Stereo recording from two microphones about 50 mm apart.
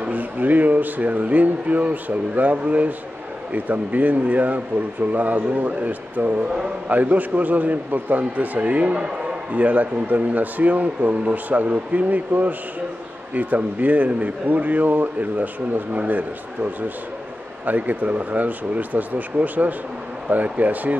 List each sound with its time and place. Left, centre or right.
0.0 s a man's voice: right
17.6 s a man's voice: right